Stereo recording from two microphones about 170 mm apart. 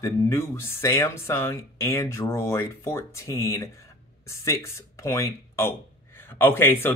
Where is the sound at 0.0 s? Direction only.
15° left (ahead or behind).